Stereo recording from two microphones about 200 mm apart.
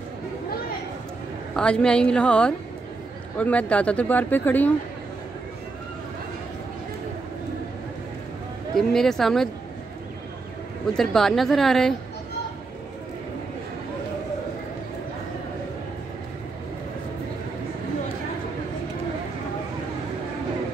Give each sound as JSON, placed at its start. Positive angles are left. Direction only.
{"t": 1.5, "sound": "a woman's voice", "side_deg": 5}
{"t": 8.7, "sound": "a woman's voice", "side_deg": 0}
{"t": 10.9, "sound": "a woman's voice", "side_deg": 0}